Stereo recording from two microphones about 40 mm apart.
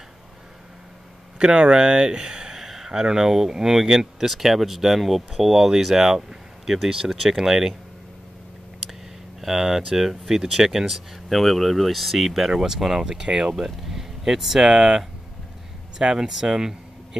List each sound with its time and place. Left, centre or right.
1.4 s speech: right
2.5 s speech: centre
9.4 s speech: centre
13.2 s speech: right
13.6 s speech: centre